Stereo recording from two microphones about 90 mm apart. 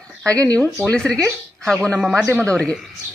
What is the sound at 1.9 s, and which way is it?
Speech, 10° right (ahead or behind).